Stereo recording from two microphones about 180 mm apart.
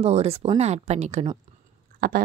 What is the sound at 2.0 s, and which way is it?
Speech, 55° right (ahead or behind).